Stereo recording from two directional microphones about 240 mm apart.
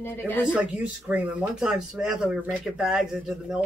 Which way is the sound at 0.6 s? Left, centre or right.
Centre.